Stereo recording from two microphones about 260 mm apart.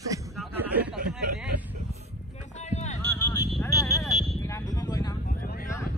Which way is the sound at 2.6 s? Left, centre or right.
Left.